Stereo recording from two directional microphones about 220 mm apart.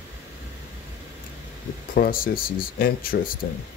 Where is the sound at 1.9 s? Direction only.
40° left (ahead or behind).